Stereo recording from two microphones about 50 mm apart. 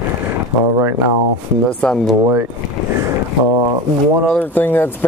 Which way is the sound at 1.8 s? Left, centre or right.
Left.